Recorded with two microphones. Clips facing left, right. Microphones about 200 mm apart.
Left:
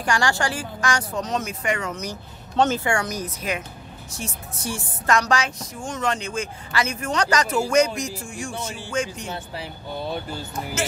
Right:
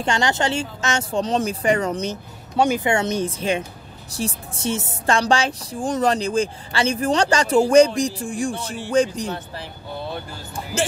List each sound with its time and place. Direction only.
0.0 s speech: 20° right (ahead or behind)
2.5 s speech: 10° right (ahead or behind); by 9.3 s 35° right (ahead or behind)
10.5 s speech: 30° right (ahead or behind)